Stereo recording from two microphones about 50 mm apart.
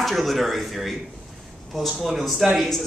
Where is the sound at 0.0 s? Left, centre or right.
Centre.